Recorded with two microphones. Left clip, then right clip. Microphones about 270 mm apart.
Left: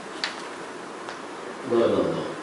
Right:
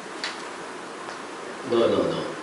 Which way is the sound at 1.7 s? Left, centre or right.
Left.